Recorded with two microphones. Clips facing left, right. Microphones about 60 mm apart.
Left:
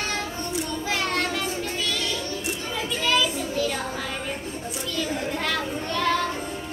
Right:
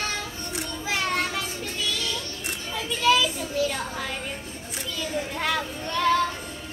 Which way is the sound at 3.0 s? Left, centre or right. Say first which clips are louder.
Right 3 dB; centre.